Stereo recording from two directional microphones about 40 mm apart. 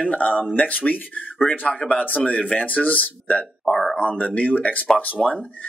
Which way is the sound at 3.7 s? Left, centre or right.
Centre.